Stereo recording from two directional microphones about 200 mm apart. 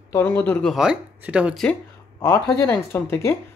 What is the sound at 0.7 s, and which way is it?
Speech, 5° right (ahead or behind).